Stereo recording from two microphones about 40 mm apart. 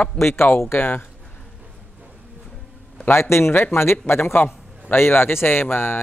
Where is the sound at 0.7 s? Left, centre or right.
Left.